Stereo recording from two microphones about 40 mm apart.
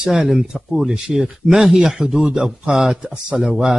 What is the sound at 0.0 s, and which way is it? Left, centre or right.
A man's voice, right.